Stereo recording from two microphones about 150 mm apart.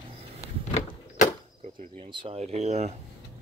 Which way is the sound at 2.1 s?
35° right (ahead or behind).